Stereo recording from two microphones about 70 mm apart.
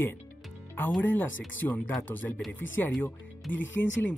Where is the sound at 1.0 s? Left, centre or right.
Left.